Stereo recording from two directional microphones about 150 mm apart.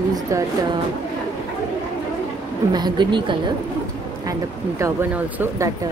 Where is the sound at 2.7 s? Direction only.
30° right (ahead or behind).